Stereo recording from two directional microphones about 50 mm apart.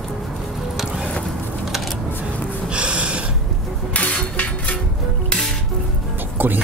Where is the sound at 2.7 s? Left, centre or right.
Right.